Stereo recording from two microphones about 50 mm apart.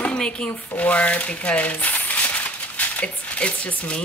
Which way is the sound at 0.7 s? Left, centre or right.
Left.